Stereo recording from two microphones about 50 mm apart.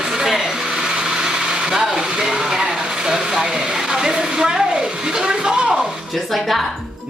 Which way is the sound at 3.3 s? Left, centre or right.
Centre.